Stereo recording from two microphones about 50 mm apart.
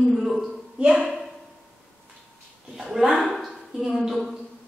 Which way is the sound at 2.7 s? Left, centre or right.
Centre.